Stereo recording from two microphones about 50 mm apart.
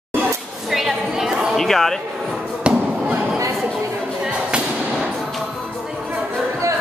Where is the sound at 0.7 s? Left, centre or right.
Centre.